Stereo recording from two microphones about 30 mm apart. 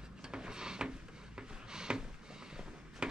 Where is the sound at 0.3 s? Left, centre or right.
Right.